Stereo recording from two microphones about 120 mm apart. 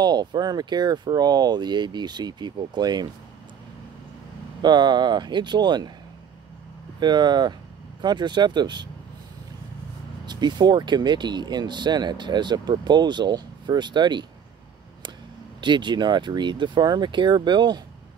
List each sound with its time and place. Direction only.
0.0 s speech: 35° right (ahead or behind)
4.6 s speech: 35° right (ahead or behind)
7.0 s speech: 35° right (ahead or behind)
10.2 s speech: 35° right (ahead or behind)
15.6 s speech: 40° right (ahead or behind)